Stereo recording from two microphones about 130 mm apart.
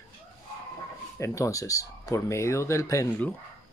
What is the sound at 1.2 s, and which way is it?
Speech, 25° left (ahead or behind).